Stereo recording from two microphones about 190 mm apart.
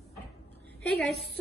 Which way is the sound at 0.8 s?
Centre (ahead or behind).